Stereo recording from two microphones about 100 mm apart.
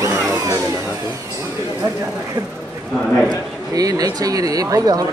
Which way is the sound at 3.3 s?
40° right (ahead or behind).